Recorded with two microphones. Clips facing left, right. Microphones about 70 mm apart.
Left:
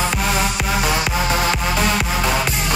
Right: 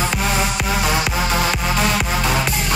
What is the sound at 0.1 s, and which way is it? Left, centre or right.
Music, centre.